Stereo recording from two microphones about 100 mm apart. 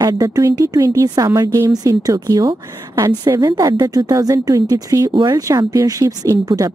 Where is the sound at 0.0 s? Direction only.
40° right (ahead or behind).